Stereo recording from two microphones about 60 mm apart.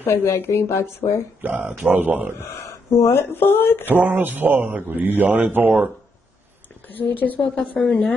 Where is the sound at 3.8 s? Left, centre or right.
Right.